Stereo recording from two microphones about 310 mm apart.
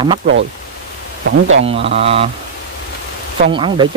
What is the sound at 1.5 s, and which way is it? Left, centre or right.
Speech, right.